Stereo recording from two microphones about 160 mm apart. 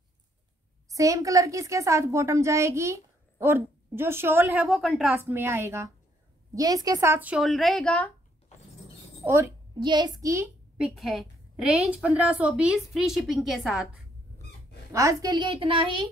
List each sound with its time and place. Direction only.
0.8 s a woman's voice: 20° right (ahead or behind)
4.6 s a woman's voice: centre (ahead or behind)
5.1 s a woman's voice: 15° right (ahead or behind); by 8.1 s 5° left (ahead or behind)
9.2 s a woman's voice: 15° right (ahead or behind)
9.8 s a woman's voice: 25° right (ahead or behind)
10.8 s a woman's voice: centre (ahead or behind)
14.9 s a woman's voice: 20° right (ahead or behind)